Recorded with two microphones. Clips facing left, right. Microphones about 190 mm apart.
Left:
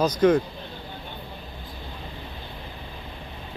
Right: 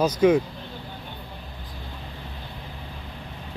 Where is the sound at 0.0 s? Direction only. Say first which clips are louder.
Right 1 dB; 10° right (ahead or behind).